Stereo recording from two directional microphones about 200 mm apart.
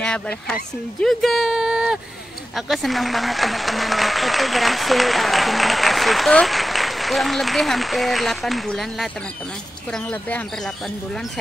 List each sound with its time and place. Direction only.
0.0 s speech: 5° left (ahead or behind)